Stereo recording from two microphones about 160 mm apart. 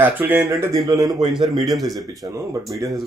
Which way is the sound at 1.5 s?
Centre (ahead or behind).